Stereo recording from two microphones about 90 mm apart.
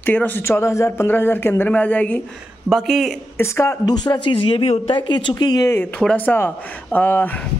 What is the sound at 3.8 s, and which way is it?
Speech, 50° left (ahead or behind).